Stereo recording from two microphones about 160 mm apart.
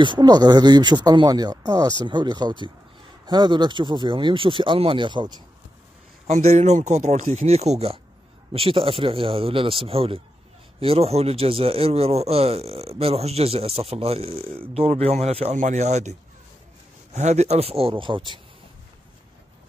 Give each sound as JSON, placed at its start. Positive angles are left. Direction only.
{"t": 0.0, "sound": "speech", "side_deg": -30}
{"t": 6.2, "sound": "speech", "side_deg": -45}